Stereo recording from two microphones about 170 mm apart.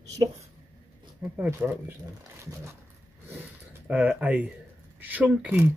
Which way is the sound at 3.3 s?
10° right (ahead or behind).